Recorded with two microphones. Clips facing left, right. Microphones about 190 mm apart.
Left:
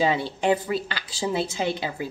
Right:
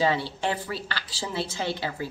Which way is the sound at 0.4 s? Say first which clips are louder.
Left 7 dB; 15° left (ahead or behind).